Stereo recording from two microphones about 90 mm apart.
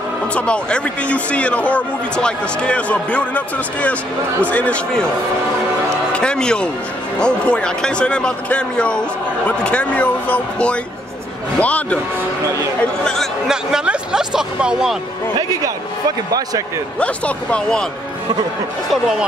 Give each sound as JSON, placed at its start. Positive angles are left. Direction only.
{"t": 0.3, "sound": "speech", "side_deg": 15}
{"t": 6.1, "sound": "speech", "side_deg": 10}
{"t": 13.0, "sound": "speech", "side_deg": 5}
{"t": 13.5, "sound": "speech", "side_deg": -5}
{"t": 16.3, "sound": "speech", "side_deg": -45}
{"t": 17.0, "sound": "speech", "side_deg": 15}